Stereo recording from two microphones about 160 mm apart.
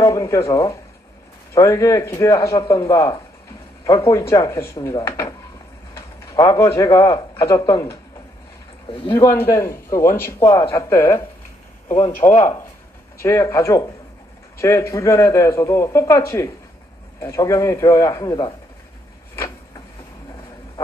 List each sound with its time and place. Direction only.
0.0 s speech: 20° left (ahead or behind)
9.1 s a man's voice: 15° left (ahead or behind)
12.2 s speech: 25° left (ahead or behind)